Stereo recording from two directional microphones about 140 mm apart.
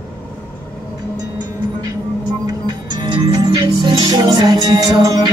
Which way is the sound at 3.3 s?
30° right (ahead or behind).